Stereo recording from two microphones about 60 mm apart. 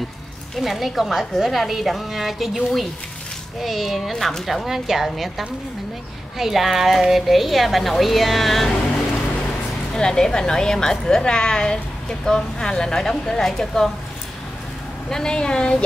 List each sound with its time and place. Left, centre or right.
0.6 s speech: centre
9.9 s a woman's voice: centre
15.0 s a woman's voice: centre